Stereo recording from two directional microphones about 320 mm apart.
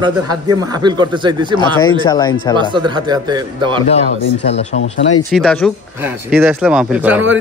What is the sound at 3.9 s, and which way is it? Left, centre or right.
Speech, centre.